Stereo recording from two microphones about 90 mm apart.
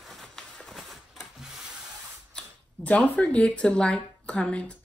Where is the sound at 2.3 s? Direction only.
15° left (ahead or behind).